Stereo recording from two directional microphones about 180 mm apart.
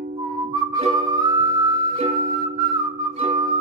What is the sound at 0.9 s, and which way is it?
Music, 20° right (ahead or behind).